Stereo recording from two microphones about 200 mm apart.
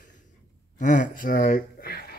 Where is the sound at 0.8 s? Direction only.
40° left (ahead or behind).